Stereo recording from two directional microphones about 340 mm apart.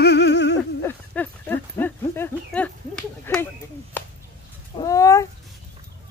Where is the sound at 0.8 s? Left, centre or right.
Centre.